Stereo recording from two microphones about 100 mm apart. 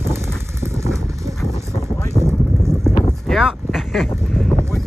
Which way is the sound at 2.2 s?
50° left (ahead or behind).